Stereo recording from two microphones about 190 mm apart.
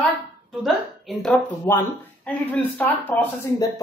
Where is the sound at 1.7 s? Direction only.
15° left (ahead or behind).